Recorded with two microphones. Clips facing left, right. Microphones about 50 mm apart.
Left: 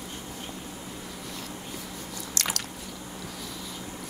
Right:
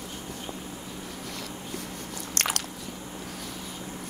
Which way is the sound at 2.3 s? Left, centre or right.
Right.